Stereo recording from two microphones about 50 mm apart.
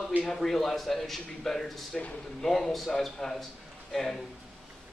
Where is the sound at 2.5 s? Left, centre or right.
Centre.